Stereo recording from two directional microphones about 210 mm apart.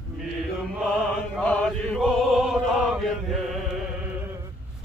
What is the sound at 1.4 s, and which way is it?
Music, 5° left (ahead or behind).